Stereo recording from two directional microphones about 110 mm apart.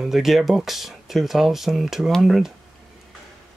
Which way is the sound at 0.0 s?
Centre (ahead or behind).